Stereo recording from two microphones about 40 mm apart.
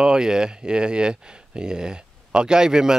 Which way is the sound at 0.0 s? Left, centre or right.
Centre.